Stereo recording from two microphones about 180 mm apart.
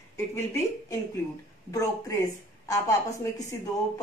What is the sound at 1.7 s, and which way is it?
Speech, 15° left (ahead or behind).